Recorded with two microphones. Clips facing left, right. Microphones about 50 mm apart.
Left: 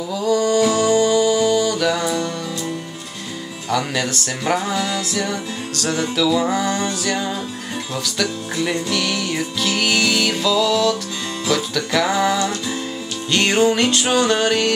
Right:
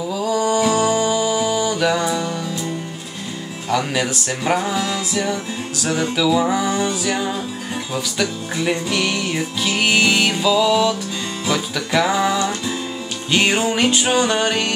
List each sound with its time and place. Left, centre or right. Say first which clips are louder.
0.1 s music: left 2 dB; centre
3.7 s music: right 1 dB; centre